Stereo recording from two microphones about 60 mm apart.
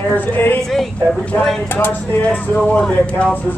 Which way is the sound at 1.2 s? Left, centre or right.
Left.